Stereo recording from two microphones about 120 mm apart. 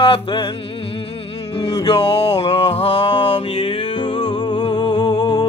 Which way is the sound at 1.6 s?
45° left (ahead or behind).